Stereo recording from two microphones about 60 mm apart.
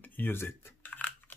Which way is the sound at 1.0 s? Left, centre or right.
Left.